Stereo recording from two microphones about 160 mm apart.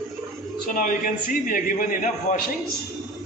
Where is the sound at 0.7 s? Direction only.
60° left (ahead or behind).